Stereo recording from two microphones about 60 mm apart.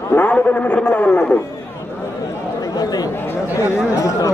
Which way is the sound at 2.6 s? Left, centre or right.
Left.